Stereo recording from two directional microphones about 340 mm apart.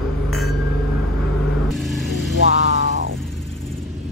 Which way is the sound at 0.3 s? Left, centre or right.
Centre.